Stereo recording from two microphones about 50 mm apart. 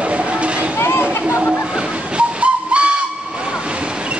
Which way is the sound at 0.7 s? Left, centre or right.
Left.